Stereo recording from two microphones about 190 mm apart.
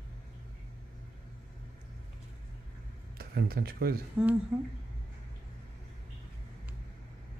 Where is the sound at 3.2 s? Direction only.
55° right (ahead or behind).